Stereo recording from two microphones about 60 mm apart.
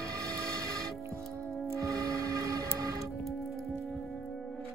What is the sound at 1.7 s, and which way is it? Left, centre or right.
Music, right.